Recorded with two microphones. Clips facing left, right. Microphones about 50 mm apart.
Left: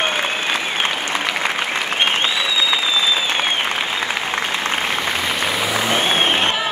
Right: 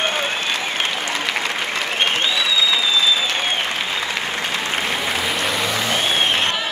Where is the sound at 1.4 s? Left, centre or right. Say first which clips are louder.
Left 2 dB; left.